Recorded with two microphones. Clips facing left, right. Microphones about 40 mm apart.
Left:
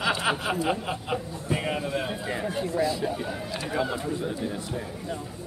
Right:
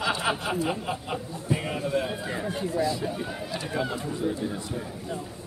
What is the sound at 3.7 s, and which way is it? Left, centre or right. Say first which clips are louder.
A man's voice: left 3 dB; centre.